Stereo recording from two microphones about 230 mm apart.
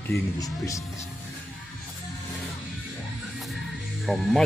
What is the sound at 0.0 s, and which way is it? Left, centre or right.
Speech, centre.